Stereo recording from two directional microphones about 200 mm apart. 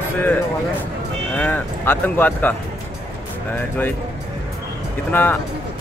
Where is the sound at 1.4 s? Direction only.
10° left (ahead or behind).